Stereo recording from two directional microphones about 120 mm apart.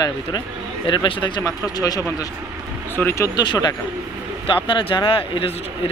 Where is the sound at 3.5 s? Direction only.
35° left (ahead or behind).